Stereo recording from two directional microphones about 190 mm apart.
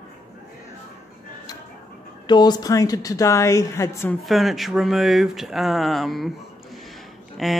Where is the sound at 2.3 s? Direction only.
20° left (ahead or behind).